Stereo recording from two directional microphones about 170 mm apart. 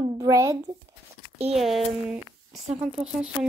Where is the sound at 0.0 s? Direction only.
25° right (ahead or behind).